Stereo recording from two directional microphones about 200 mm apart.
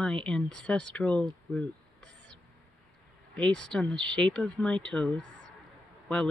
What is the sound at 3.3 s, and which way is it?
Speech, 5° left (ahead or behind).